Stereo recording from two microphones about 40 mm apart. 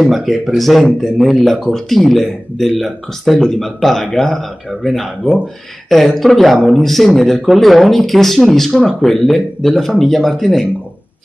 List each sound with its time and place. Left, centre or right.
0.0 s speech: centre